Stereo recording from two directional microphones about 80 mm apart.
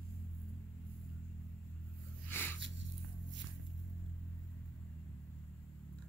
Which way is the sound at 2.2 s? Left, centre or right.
Left.